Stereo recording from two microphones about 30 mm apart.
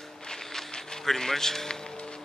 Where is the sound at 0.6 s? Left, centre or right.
Centre.